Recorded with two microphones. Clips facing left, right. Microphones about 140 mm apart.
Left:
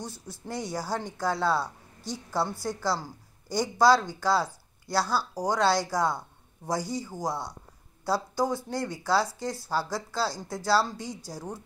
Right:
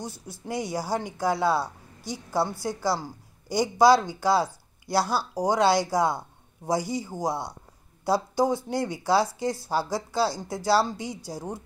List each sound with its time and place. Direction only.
0.0 s speech: 10° right (ahead or behind)